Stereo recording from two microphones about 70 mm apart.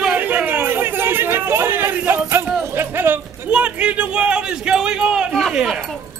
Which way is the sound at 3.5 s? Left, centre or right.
Centre.